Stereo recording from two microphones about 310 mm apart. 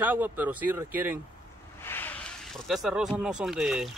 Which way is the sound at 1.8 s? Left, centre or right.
Centre.